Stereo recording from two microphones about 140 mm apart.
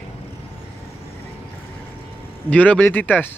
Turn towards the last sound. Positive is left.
turn(degrees=10)  # may be behind; listen again after turning